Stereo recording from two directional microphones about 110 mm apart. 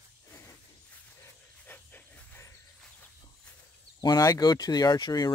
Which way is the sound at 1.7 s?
15° left (ahead or behind).